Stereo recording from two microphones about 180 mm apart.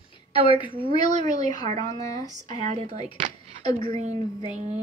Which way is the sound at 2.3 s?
45° right (ahead or behind).